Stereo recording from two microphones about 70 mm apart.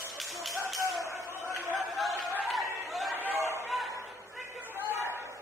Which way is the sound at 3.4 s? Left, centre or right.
Right.